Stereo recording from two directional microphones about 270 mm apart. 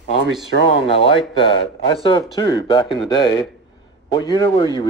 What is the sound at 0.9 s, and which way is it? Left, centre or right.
Speech, centre.